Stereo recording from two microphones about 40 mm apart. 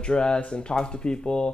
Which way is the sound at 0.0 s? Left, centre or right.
Left.